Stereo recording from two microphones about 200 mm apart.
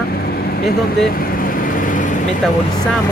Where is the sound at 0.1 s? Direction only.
50° left (ahead or behind).